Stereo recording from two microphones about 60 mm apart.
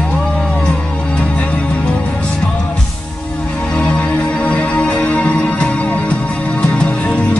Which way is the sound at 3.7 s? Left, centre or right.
Centre.